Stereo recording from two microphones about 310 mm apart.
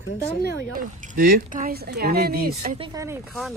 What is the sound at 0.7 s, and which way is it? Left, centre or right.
Speech, right.